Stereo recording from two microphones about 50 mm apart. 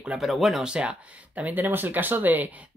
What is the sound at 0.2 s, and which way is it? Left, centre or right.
Speech, centre.